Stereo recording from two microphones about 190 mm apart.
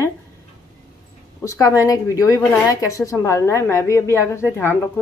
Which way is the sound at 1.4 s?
15° left (ahead or behind).